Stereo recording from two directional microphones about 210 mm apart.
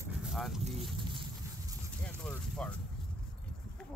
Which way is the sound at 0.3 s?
Centre (ahead or behind).